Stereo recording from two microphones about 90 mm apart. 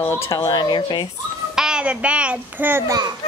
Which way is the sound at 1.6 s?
10° right (ahead or behind).